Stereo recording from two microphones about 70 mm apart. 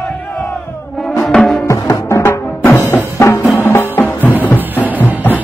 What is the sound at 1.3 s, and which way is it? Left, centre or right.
Music, centre.